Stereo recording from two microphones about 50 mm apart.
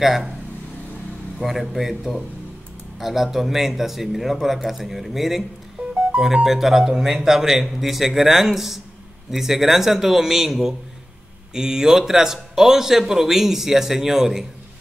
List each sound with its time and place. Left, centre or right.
1.4 s speech: centre
5.8 s music: right
6.1 s a man's voice: centre